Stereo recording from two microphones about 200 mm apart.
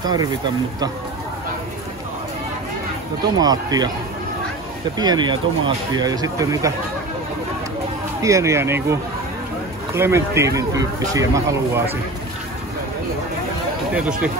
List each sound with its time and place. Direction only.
0.0 s speech: 20° right (ahead or behind)
3.3 s speech: 20° right (ahead or behind)
4.9 s speech: 20° right (ahead or behind)
8.2 s speech: 15° right (ahead or behind)
9.9 s speech: 15° right (ahead or behind)
13.9 s speech: 5° right (ahead or behind)